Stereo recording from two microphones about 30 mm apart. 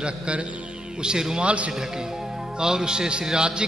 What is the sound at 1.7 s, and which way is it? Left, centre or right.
A man's voice, centre.